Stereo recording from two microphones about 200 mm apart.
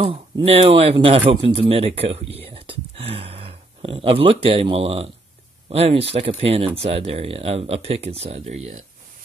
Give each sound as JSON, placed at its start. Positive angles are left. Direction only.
{"t": 0.0, "sound": "a man's voice", "side_deg": -30}